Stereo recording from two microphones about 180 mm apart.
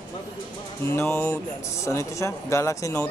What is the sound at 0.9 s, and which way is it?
Speech, 15° left (ahead or behind).